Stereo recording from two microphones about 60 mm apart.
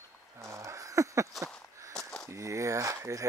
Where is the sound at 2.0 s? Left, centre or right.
Centre.